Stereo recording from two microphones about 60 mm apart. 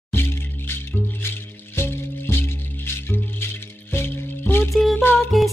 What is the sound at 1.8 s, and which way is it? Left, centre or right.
Music, left.